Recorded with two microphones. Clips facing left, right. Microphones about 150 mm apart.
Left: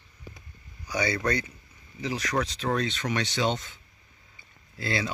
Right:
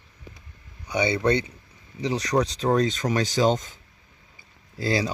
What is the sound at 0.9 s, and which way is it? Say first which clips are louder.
Speech: right 5 dB; 25° right (ahead or behind).